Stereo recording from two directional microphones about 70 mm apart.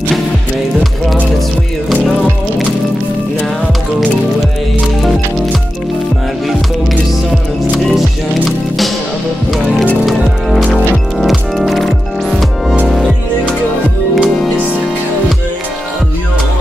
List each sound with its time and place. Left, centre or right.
5.0 s music: centre
7.7 s music: centre
10.0 s music: centre